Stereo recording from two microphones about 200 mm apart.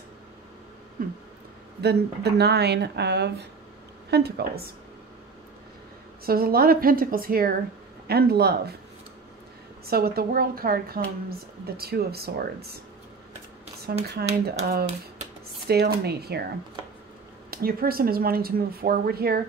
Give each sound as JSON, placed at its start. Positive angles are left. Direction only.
{"t": 1.0, "sound": "a woman's voice", "side_deg": -45}
{"t": 6.2, "sound": "a woman's voice", "side_deg": -50}
{"t": 9.8, "sound": "a woman's voice", "side_deg": -50}
{"t": 14.2, "sound": "a woman's voice", "side_deg": -55}
{"t": 15.6, "sound": "a woman's voice", "side_deg": -55}
{"t": 17.5, "sound": "a woman's voice", "side_deg": -50}